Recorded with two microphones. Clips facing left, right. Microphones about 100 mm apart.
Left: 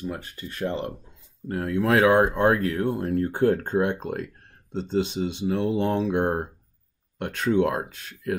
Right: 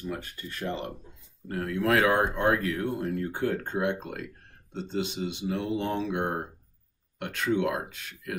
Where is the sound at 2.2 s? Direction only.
35° left (ahead or behind).